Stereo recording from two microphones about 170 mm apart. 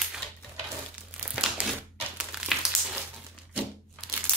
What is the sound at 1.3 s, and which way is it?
Crumpling, 5° right (ahead or behind).